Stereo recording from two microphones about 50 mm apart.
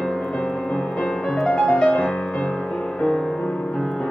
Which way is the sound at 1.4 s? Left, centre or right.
Left.